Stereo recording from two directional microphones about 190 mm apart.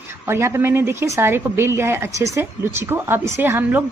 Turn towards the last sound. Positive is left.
turn(degrees=-10)  # may be behind; listen again after turning